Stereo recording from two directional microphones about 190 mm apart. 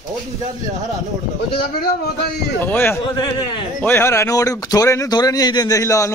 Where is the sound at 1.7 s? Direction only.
55° left (ahead or behind).